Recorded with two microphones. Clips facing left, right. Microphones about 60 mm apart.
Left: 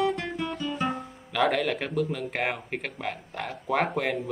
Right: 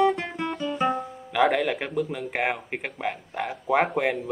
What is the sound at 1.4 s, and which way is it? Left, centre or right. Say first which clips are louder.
Speech: right 3 dB; centre.